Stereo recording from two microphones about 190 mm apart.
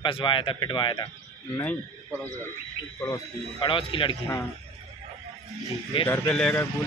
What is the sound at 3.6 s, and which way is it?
Speech, 25° left (ahead or behind).